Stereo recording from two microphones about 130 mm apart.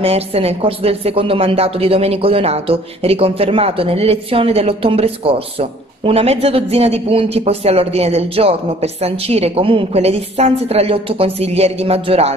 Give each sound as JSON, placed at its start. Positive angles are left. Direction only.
{"t": 0.0, "sound": "a woman's voice", "side_deg": -50}